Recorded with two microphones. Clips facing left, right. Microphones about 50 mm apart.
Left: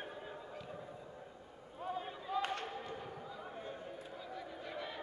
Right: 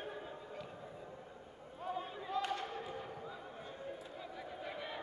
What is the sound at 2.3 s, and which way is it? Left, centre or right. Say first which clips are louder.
Basketball bounce: even; centre.